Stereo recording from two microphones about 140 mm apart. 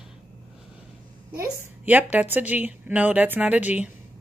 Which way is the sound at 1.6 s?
15° right (ahead or behind).